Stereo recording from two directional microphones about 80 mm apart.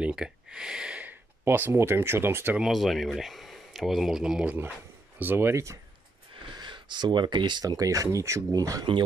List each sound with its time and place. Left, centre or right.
0.0 s speech: centre
1.4 s speech: right
2.6 s speech: centre
5.2 s speech: right
6.3 s a sound: right
7.6 s speech: right